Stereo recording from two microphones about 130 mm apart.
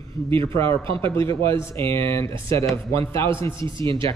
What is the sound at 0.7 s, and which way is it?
Speech, 40° right (ahead or behind).